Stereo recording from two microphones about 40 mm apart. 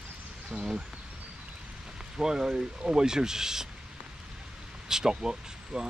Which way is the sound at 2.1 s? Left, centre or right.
Centre.